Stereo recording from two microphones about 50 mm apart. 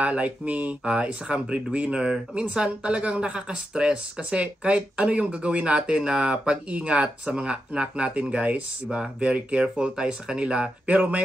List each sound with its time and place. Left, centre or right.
0.0 s speech: right